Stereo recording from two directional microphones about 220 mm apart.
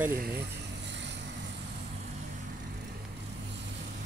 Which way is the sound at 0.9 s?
55° right (ahead or behind).